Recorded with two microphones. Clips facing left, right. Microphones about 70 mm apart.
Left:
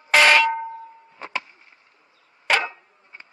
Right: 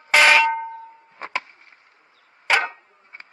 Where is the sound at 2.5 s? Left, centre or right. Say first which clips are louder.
Right 1 dB; centre.